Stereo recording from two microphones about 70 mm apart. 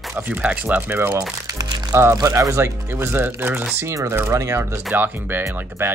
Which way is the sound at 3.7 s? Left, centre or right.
Right.